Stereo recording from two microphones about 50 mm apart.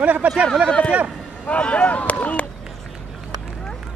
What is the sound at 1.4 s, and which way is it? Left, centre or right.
Speech, left.